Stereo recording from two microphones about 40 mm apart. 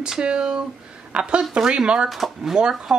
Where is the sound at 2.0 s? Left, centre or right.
Centre.